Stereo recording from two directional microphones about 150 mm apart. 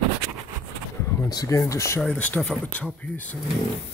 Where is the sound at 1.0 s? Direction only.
20° left (ahead or behind).